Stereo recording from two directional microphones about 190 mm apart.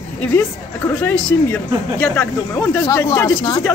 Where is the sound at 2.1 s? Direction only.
15° left (ahead or behind).